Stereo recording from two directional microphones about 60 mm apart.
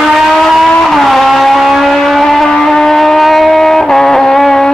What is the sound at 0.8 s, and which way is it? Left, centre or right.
Vehicle, centre.